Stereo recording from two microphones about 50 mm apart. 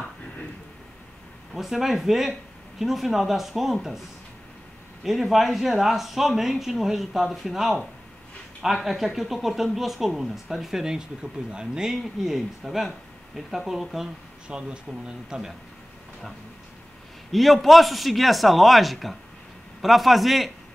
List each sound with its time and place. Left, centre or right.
1.5 s speech: centre
5.0 s speech: centre
14.5 s speech: centre
17.3 s speech: centre